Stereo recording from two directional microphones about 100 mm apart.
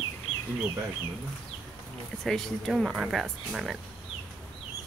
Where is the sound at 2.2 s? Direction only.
5° left (ahead or behind).